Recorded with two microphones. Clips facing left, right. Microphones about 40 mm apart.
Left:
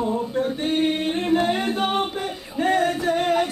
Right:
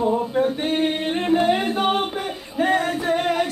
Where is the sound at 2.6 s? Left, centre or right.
Centre.